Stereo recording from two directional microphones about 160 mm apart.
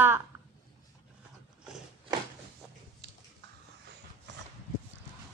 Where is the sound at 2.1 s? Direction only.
25° right (ahead or behind).